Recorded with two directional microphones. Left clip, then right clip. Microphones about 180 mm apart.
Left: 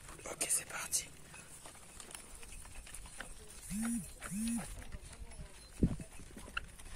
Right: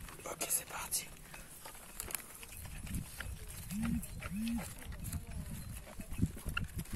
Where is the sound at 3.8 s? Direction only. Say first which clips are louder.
Even; centre (ahead or behind).